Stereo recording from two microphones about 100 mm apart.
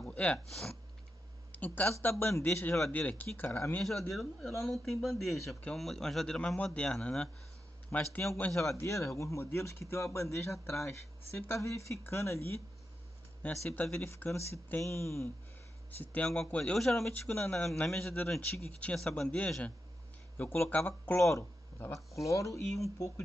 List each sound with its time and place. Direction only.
0.1 s sniff: 15° left (ahead or behind)
0.5 s speech: 5° left (ahead or behind)
1.5 s a man's voice: 15° left (ahead or behind)
4.1 s a man's voice: centre (ahead or behind); by 8.3 s 20° left (ahead or behind)
8.4 s a man's voice: 5° left (ahead or behind)
8.7 s speech: 30° left (ahead or behind)
13.7 s speech: 20° left (ahead or behind)
16.0 s a man's voice: 15° left (ahead or behind)
17.1 s a man's voice: 20° left (ahead or behind)
20.3 s speech: 25° left (ahead or behind)